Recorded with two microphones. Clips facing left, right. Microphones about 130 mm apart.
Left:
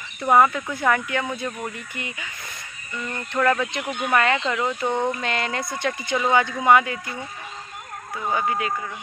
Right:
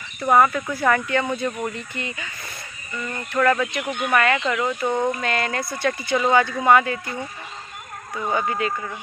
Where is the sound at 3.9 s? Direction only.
20° left (ahead or behind).